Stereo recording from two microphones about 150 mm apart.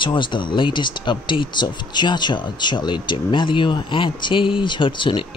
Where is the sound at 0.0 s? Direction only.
35° left (ahead or behind).